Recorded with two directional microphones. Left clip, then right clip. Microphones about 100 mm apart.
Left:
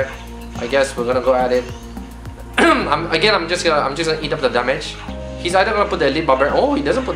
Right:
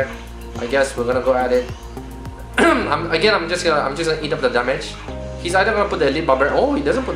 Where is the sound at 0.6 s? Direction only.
Centre (ahead or behind).